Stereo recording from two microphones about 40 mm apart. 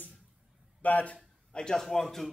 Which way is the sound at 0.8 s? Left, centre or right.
Left.